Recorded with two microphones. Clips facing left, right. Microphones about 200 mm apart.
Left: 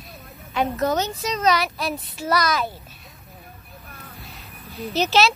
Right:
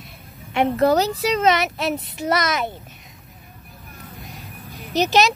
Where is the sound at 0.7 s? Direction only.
35° right (ahead or behind).